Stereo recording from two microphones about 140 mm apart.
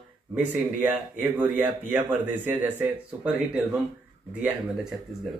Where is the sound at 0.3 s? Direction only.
10° right (ahead or behind).